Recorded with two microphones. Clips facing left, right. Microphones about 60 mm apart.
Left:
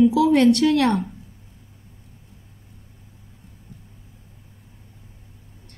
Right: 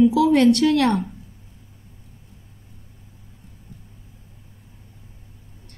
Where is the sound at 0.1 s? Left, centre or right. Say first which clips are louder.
Even; centre.